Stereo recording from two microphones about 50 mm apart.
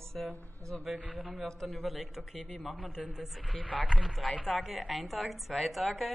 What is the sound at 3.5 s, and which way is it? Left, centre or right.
Speech, left.